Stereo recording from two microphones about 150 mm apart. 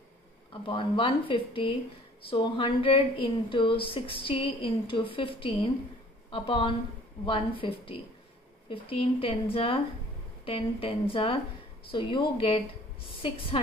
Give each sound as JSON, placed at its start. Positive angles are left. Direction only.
{"t": 0.7, "sound": "a woman's voice", "side_deg": 35}